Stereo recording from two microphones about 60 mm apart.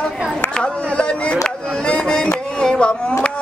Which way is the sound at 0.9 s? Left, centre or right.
Centre.